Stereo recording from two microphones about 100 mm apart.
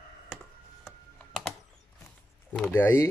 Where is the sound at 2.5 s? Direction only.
15° left (ahead or behind).